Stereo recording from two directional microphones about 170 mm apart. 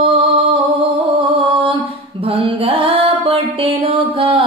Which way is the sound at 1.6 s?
35° right (ahead or behind).